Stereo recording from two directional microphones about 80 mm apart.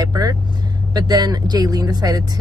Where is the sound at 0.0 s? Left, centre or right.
Right.